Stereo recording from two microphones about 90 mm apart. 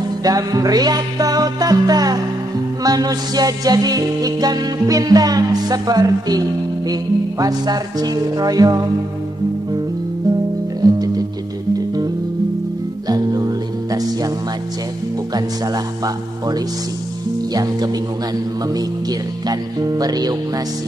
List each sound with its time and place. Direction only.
0.2 s music: 45° right (ahead or behind)
10.8 s music: 45° right (ahead or behind)
13.1 s music: 45° right (ahead or behind)
15.3 s music: 45° right (ahead or behind)
17.6 s music: 45° right (ahead or behind)